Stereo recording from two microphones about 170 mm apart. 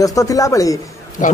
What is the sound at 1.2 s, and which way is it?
Speech, 50° left (ahead or behind).